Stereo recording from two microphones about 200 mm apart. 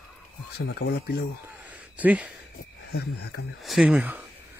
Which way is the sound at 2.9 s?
55° left (ahead or behind).